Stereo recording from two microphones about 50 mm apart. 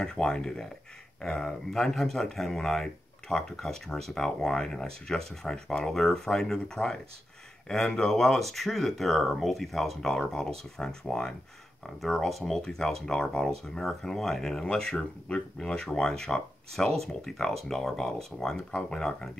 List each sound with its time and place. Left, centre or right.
0.0 s speech: centre